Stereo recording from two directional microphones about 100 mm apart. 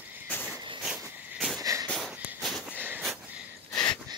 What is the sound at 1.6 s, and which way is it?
Wheeze, 35° right (ahead or behind).